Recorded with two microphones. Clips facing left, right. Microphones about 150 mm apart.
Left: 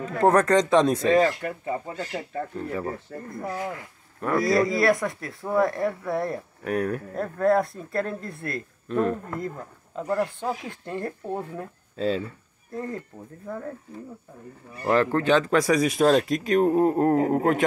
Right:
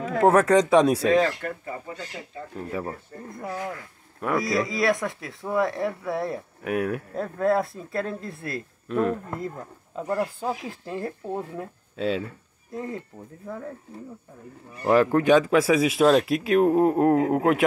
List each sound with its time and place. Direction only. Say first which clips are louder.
0.2 s speech: right 1 dB; 5° right (ahead or behind)
1.1 s speech: left 1 dB; 10° left (ahead or behind)
2.1 s speech: left 6 dB; 40° left (ahead or behind)
3.3 s speech: left 1 dB; 5° left (ahead or behind)
14.9 s speech: right 3 dB; 10° right (ahead or behind)